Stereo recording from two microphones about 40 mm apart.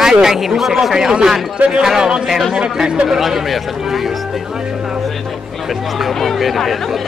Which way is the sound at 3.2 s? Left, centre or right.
Centre.